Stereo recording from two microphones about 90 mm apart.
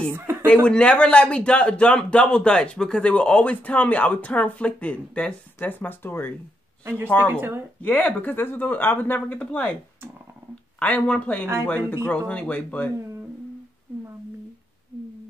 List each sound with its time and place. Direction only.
0.1 s speech: 25° right (ahead or behind)
0.7 s speech: 10° left (ahead or behind)
6.8 s speech: 30° right (ahead or behind)
7.8 s speech: 15° left (ahead or behind)
10.8 s speech: 15° left (ahead or behind)